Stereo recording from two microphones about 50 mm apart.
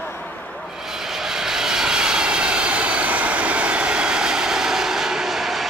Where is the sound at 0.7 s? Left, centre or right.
Centre.